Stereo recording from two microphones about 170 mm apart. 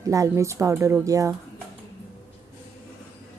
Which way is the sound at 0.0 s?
20° right (ahead or behind).